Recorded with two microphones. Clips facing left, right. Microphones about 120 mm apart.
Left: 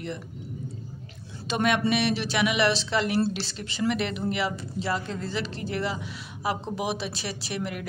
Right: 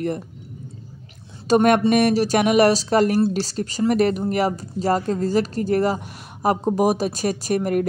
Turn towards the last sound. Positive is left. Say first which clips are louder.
# right 12 dB
turn(degrees=-45)  # may be behind; listen again after turning